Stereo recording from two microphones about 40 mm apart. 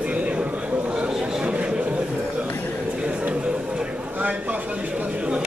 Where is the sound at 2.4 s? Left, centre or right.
Left.